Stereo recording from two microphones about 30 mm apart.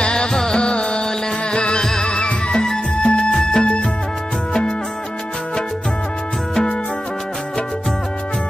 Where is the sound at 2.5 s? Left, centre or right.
Left.